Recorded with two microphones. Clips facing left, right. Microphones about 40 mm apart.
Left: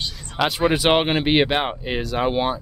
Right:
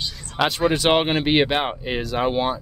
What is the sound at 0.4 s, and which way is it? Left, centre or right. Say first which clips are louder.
Speech: even; centre.